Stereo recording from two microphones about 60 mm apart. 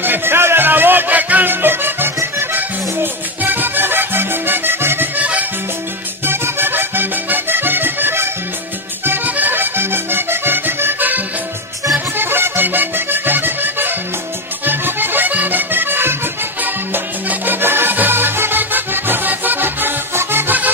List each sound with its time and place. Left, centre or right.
0.0 s music: right
6.2 s accordion: right
12.2 s music: right
14.6 s accordion: right
16.6 s music: right